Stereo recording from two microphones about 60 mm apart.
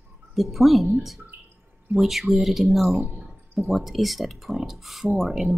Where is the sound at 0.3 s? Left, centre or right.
Centre.